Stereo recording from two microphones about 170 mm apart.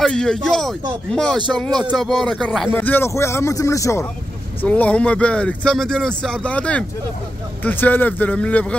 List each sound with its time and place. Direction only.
0.0 s speech: 5° left (ahead or behind)